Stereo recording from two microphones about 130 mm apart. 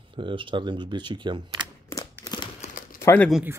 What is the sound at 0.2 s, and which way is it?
Speech, 40° right (ahead or behind).